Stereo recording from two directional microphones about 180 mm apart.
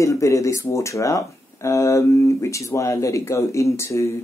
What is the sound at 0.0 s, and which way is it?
Speech, 15° left (ahead or behind).